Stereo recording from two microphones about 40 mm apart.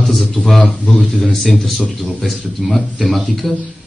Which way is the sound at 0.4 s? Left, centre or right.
Left.